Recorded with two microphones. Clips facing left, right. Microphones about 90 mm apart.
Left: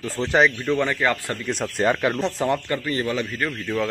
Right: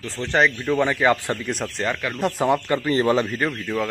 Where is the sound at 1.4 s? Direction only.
Centre (ahead or behind).